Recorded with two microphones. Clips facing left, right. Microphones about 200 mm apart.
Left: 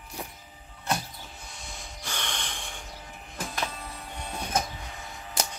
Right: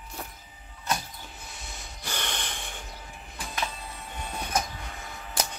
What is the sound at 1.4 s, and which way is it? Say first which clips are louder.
Snort: even; 5° right (ahead or behind).